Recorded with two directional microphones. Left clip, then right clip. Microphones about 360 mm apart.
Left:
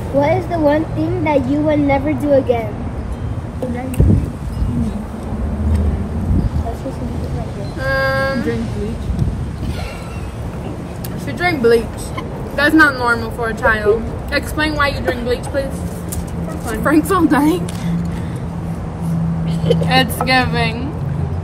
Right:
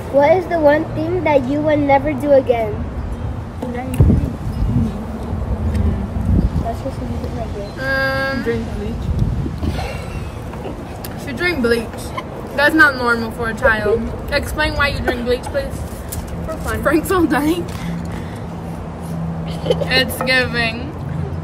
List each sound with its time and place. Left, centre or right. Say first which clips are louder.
0.2 s a woman's voice: right 3 dB; right
7.8 s vehicle: left 2 dB; centre
11.3 s a woman's voice: left 4 dB; centre
16.8 s a woman's voice: left 2 dB; centre
19.4 s vehicle: left 1 dB; centre
19.9 s speech: left 2 dB; centre